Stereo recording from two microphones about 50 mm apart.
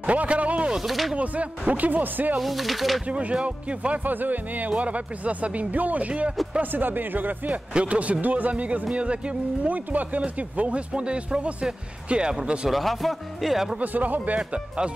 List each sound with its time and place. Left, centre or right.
0.0 s a sound: right
0.8 s speech: centre
1.1 s speech: right
2.3 s speech: centre
3.1 s speech: right
6.6 s speech: right
7.4 s speech: right
12.7 s speech: centre
13.7 s speech: right